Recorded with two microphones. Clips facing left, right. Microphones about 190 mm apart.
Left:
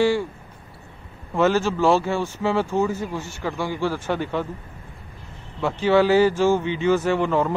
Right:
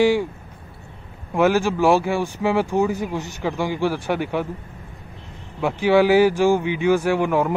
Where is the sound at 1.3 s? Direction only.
15° right (ahead or behind).